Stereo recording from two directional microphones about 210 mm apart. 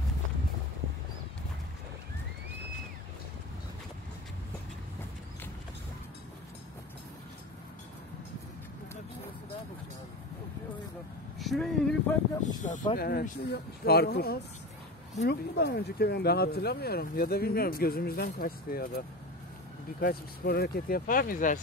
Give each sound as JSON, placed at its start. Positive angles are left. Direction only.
{"t": 11.3, "sound": "speech", "side_deg": 0}
{"t": 12.6, "sound": "speech", "side_deg": 35}